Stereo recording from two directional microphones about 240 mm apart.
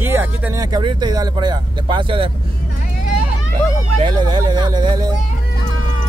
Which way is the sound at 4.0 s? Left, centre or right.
Centre.